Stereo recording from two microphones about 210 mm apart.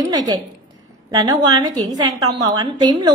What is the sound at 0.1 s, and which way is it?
A woman's voice, 20° right (ahead or behind).